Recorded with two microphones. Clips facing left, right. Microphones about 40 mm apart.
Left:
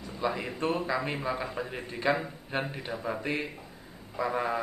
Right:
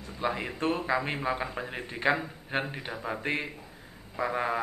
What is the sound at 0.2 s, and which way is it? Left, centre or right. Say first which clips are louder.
A man's voice: even; centre.